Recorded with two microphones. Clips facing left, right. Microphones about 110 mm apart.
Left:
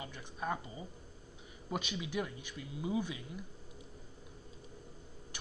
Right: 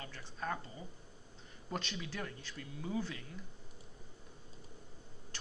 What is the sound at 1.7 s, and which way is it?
Speech, 15° left (ahead or behind).